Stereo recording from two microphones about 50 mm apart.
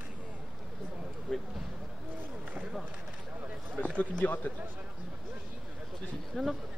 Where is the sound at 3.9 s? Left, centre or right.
Left.